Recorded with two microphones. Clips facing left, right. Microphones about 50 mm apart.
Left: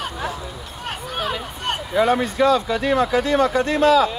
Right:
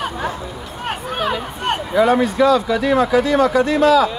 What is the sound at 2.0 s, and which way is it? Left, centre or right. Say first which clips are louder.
Speech: right 4 dB; right.